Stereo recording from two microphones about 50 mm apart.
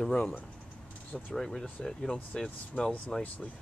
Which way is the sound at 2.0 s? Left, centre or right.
Left.